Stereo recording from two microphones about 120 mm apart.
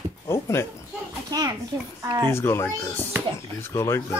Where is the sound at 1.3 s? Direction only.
30° right (ahead or behind).